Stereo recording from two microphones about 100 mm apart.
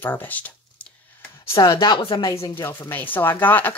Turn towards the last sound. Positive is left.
turn(degrees=20)  # may be behind; listen again after turning